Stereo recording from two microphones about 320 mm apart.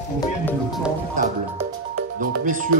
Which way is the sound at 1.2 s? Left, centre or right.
Right.